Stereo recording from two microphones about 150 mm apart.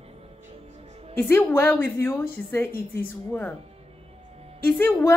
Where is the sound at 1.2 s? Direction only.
15° left (ahead or behind).